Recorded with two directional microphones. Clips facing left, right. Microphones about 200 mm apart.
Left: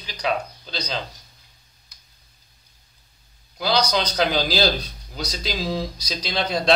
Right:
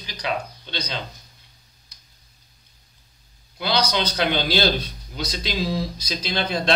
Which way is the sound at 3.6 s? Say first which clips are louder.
Left 1 dB; 35° left (ahead or behind).